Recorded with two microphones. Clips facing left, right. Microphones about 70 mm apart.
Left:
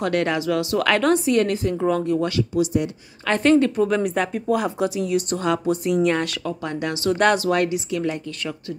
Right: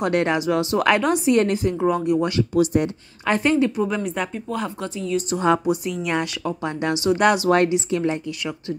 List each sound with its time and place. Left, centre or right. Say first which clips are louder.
0.0 s a woman's voice: right 1 dB; right
2.5 s speech: right 4 dB; right
3.3 s a woman's voice: left 2 dB; centre
6.0 s a woman's voice: left 3 dB; centre
6.4 s speech: right 2 dB; right
7.4 s speech: right 3 dB; right